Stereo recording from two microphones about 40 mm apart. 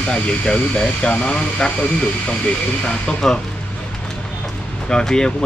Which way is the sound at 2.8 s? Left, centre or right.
Left.